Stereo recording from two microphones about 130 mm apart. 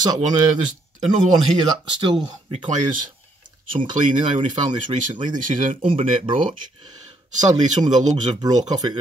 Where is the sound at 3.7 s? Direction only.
40° right (ahead or behind).